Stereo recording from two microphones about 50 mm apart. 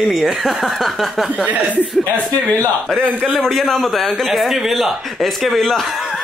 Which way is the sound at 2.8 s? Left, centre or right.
Centre.